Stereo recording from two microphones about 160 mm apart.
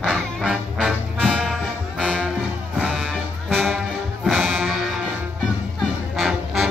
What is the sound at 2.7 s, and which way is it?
Music, 5° right (ahead or behind).